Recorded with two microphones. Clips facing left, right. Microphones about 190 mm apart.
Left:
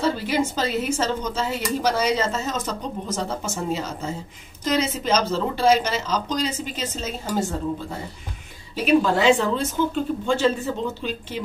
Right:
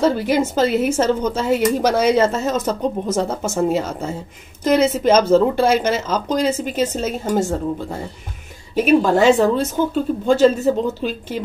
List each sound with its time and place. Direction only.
0.0 s speech: 50° right (ahead or behind)
8.7 s speech: 45° right (ahead or behind)